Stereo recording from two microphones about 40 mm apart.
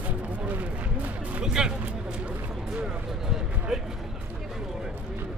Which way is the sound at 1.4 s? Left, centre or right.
Centre.